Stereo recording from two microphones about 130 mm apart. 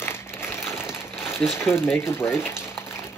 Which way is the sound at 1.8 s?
20° left (ahead or behind).